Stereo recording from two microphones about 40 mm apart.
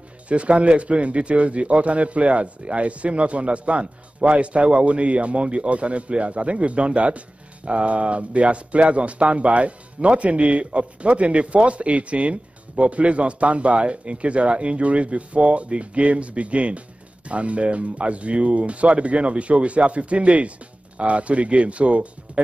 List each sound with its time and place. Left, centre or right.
0.3 s speech: right